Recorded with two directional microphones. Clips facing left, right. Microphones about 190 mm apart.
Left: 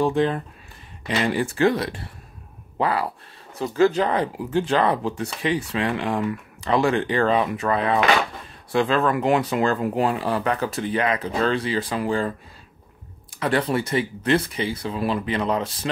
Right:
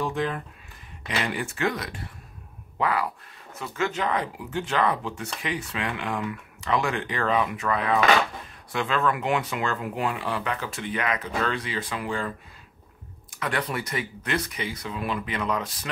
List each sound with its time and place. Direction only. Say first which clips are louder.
0.0 s speech: left 7 dB; 30° left (ahead or behind)
13.3 s speech: left 7 dB; 30° left (ahead or behind)